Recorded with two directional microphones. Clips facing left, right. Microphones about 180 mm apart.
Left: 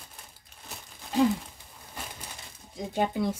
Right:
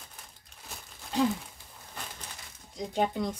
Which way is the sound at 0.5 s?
5° left (ahead or behind).